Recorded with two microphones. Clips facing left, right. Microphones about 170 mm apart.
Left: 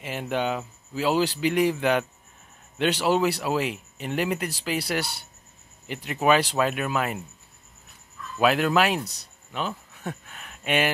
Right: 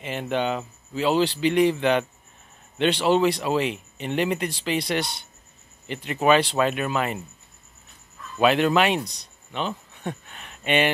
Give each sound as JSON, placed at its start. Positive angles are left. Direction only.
{"t": 0.0, "sound": "speech", "side_deg": 5}
{"t": 8.4, "sound": "speech", "side_deg": 5}